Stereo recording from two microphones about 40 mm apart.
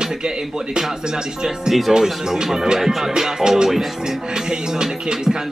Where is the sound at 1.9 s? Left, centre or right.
Centre.